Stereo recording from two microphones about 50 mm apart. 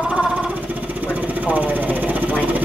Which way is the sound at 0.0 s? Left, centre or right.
Right.